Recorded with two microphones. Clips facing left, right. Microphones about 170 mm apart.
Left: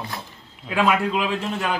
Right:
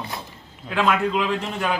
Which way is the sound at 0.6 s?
5° left (ahead or behind).